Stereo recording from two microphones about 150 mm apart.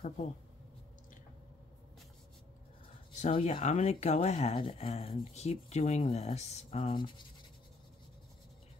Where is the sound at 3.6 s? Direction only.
50° left (ahead or behind).